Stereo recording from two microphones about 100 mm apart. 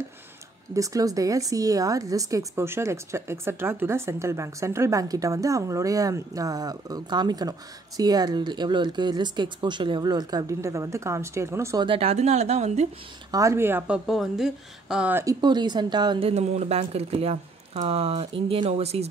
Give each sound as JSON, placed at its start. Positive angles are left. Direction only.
{"t": 0.7, "sound": "speech", "side_deg": -35}
{"t": 11.8, "sound": "speech", "side_deg": -70}
{"t": 13.3, "sound": "speech", "side_deg": -30}
{"t": 13.8, "sound": "speech", "side_deg": -5}
{"t": 15.4, "sound": "speech", "side_deg": -45}
{"t": 16.2, "sound": "speech", "side_deg": -85}